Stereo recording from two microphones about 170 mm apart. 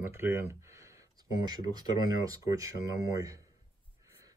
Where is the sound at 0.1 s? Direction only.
15° right (ahead or behind).